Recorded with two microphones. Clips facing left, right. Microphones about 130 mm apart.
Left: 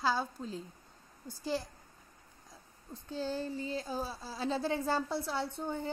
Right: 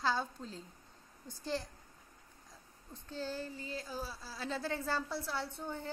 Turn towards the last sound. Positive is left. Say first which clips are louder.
# left 5 dB
turn(degrees=15)  # may be behind; listen again after turning